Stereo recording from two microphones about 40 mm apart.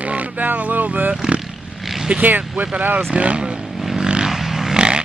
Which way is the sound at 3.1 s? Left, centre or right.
Right.